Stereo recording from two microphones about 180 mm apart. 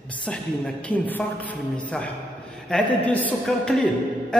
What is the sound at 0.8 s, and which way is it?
Speech, 10° left (ahead or behind).